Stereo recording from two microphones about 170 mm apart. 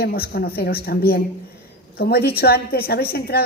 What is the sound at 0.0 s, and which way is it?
A woman's voice, 65° left (ahead or behind).